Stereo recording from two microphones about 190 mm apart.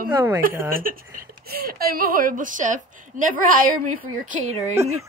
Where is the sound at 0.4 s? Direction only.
50° right (ahead or behind).